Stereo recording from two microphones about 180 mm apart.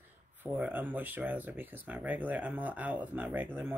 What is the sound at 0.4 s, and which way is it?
Speech, 10° right (ahead or behind).